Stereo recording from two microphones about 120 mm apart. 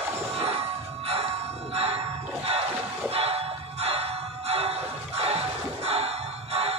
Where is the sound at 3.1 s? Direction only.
60° right (ahead or behind).